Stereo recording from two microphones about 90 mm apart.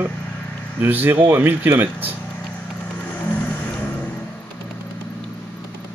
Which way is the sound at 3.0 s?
20° left (ahead or behind).